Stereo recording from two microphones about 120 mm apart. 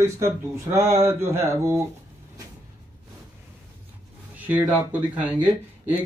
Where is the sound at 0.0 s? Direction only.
25° right (ahead or behind).